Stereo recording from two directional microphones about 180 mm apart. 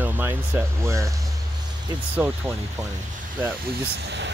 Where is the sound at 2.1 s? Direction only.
15° right (ahead or behind).